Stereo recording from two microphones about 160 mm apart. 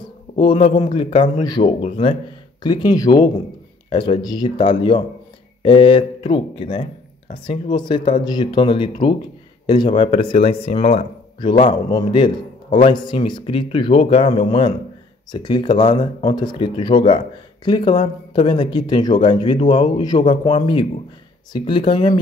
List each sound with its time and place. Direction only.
0.4 s speech: 30° left (ahead or behind)